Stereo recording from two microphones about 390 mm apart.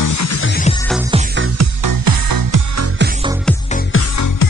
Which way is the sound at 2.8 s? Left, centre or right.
Right.